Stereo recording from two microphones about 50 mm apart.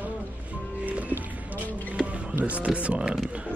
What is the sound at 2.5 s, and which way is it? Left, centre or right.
Speech, right.